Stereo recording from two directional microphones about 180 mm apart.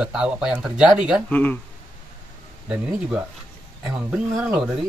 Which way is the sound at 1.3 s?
10° left (ahead or behind).